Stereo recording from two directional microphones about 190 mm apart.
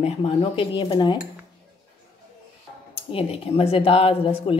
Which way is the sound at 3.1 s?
30° left (ahead or behind).